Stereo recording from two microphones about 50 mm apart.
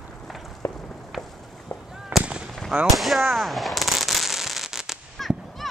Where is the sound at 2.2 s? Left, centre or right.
Centre.